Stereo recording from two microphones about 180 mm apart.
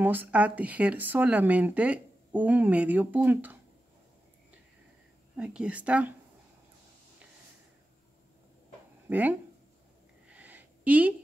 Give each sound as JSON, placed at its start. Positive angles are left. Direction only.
{"t": 0.0, "sound": "speech", "side_deg": -10}
{"t": 5.3, "sound": "speech", "side_deg": -5}
{"t": 9.1, "sound": "speech", "side_deg": -10}
{"t": 10.3, "sound": "a sound", "side_deg": -10}